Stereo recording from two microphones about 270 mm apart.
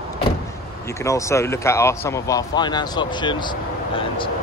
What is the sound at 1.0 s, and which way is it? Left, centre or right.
Speech, centre.